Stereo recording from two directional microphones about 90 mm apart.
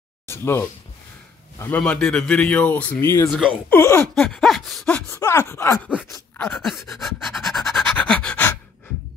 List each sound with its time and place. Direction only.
0.3 s speech: 30° left (ahead or behind)
1.8 s a man's voice: 10° left (ahead or behind)
3.0 s groan: 30° left (ahead or behind)
3.3 s gasp: centre (ahead or behind)
3.7 s speech: 25° left (ahead or behind)
4.1 s gasp: 5° left (ahead or behind)
5.1 s groan: 30° left (ahead or behind)
6.5 s pant: centre (ahead or behind)